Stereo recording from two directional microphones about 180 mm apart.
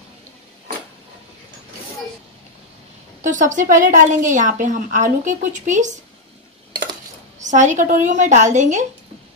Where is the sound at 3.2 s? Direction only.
45° right (ahead or behind).